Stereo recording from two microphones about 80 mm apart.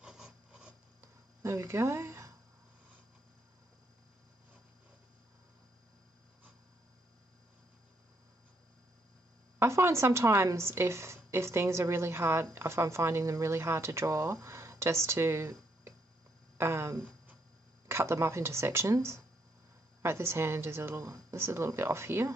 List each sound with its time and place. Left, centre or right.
0.0 s a sound: centre
1.4 s speech: right
9.6 s speech: right